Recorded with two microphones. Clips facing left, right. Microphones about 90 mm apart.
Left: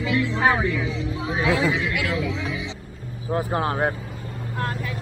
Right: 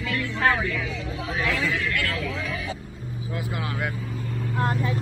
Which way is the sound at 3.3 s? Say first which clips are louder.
Left 8 dB; 40° left (ahead or behind).